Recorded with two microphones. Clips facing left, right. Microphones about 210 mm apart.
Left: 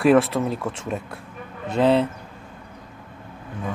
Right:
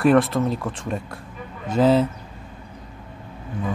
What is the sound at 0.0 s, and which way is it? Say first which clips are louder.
Speech: even; centre (ahead or behind).